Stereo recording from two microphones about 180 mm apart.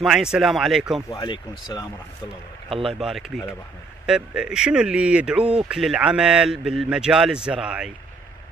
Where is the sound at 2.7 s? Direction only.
30° right (ahead or behind).